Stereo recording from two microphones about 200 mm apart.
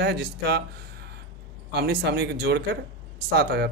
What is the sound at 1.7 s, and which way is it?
Speech, 55° right (ahead or behind).